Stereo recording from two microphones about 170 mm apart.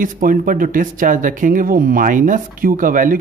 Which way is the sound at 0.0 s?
55° right (ahead or behind).